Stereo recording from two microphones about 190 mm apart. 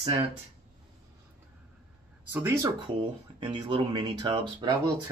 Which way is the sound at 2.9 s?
25° right (ahead or behind).